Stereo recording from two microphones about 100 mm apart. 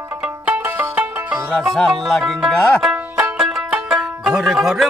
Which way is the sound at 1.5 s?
5° right (ahead or behind).